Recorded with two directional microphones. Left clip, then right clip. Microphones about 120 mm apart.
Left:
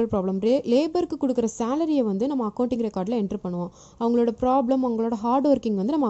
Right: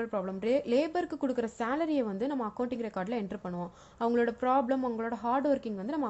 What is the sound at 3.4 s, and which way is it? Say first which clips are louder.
Speech: left 7 dB; 10° right (ahead or behind).